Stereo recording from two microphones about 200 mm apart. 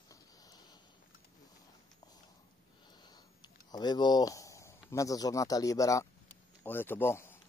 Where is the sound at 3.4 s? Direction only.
20° left (ahead or behind).